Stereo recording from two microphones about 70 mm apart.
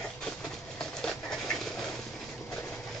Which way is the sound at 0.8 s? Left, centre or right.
Centre.